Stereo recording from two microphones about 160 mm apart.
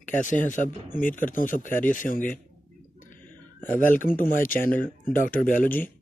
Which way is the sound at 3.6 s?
60° left (ahead or behind).